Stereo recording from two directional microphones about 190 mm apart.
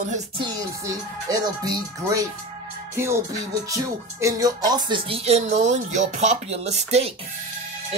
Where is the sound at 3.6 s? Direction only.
15° right (ahead or behind); by 7.1 s 35° right (ahead or behind).